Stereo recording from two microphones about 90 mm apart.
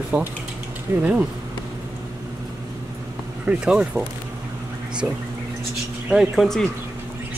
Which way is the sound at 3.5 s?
10° right (ahead or behind).